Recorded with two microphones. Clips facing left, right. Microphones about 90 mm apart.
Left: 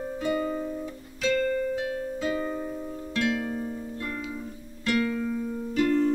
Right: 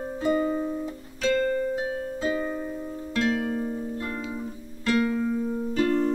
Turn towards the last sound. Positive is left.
turn(degrees=-20)  # may be behind; listen again after turning